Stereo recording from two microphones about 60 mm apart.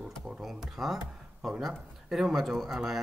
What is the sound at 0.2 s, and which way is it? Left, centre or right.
Speech, centre.